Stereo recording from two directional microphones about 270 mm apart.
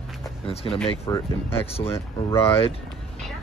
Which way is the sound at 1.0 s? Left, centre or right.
Centre.